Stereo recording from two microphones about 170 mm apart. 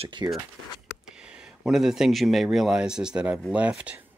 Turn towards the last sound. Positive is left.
turn(degrees=-10)  # may be behind; listen again after turning